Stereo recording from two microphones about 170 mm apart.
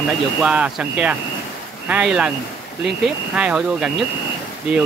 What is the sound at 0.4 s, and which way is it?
Speech, 5° right (ahead or behind).